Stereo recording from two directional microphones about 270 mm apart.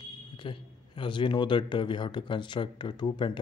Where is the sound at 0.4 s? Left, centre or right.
Centre.